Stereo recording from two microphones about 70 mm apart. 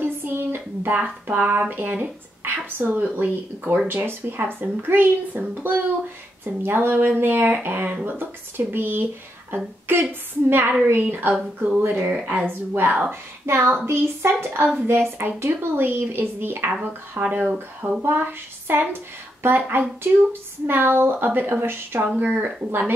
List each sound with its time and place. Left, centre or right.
0.0 s a sound: right
0.9 s speech: right
11.3 s speech: centre
11.8 s speech: right
13.5 s speech: right
17.5 s speech: centre
18.0 s speech: right